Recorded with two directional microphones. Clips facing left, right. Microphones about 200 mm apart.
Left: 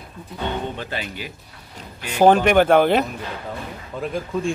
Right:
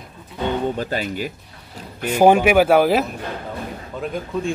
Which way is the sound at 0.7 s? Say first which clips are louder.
Right 6 dB; 40° right (ahead or behind).